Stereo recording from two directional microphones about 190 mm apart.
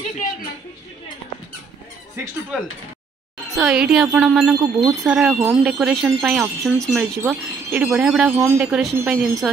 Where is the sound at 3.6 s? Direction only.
5° right (ahead or behind).